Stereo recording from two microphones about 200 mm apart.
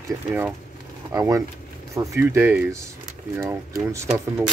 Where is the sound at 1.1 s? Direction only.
15° right (ahead or behind).